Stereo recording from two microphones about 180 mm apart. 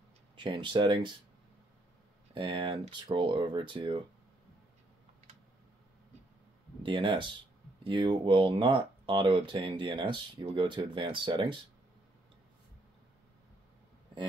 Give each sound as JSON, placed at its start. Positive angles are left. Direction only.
{"t": 0.4, "sound": "speech", "side_deg": -25}
{"t": 2.3, "sound": "speech", "side_deg": -30}
{"t": 6.8, "sound": "speech", "side_deg": -25}